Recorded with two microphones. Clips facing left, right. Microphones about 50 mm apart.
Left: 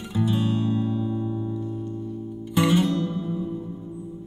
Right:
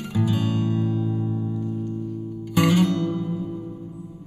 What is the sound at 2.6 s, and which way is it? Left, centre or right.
Music, right.